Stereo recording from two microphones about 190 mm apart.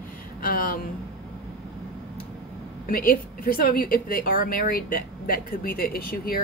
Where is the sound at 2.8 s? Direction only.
50° left (ahead or behind).